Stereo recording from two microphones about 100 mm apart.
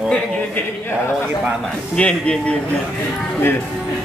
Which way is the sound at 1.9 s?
10° left (ahead or behind).